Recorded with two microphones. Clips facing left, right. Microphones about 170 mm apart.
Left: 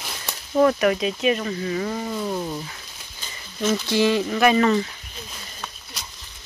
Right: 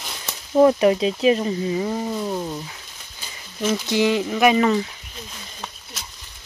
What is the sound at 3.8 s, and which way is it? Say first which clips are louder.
Speech: right 1 dB; 15° right (ahead or behind).